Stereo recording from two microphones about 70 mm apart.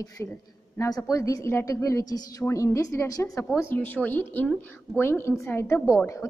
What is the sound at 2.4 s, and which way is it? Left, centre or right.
Speech, left.